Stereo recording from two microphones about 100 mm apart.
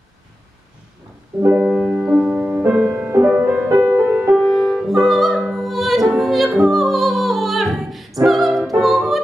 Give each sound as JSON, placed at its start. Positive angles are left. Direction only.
{"t": 1.7, "sound": "music", "side_deg": -5}
{"t": 3.1, "sound": "music", "side_deg": -25}
{"t": 4.3, "sound": "music", "side_deg": 0}